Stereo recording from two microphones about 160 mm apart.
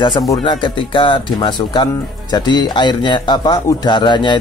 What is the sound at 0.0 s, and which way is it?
Speech, 30° left (ahead or behind).